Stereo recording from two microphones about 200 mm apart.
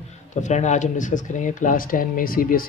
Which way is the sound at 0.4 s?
35° left (ahead or behind).